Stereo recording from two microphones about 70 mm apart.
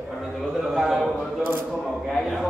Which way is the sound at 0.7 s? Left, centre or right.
Centre.